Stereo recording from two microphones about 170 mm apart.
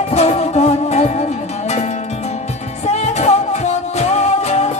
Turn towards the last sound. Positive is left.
turn(degrees=40)  # may be behind; listen again after turning